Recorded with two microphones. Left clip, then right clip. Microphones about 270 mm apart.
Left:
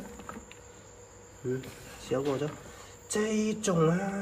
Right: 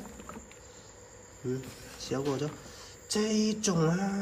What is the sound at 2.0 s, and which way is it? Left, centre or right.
A man's voice, centre.